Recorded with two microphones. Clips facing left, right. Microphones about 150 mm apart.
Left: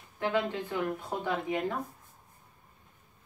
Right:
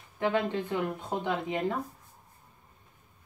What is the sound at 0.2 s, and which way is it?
Speech, 20° right (ahead or behind).